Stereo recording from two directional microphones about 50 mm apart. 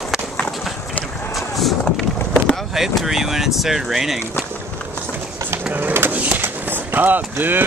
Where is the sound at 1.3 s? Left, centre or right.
Centre.